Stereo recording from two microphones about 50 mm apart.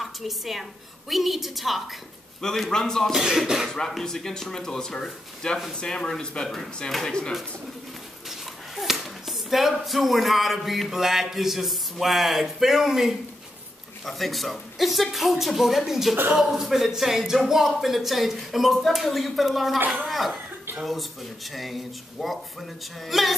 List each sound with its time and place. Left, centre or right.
0.0 s speech: centre
2.4 s speech: centre
3.1 s speech: centre
3.6 s speech: centre
8.3 s speech: centre